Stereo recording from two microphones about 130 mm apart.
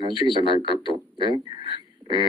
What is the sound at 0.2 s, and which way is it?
Speech, 40° left (ahead or behind).